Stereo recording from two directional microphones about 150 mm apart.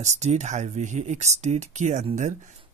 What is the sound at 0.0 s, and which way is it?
Speech, 50° right (ahead or behind).